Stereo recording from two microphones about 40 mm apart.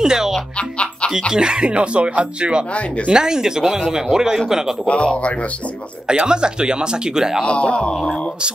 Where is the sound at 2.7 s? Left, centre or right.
Left.